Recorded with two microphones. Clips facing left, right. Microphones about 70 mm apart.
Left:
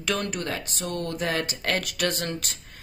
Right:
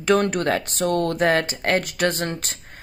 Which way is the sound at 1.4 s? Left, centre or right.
Right.